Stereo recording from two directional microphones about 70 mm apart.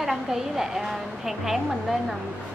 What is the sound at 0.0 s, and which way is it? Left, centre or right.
A woman's voice, centre.